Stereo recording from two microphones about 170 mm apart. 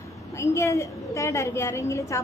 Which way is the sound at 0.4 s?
20° left (ahead or behind).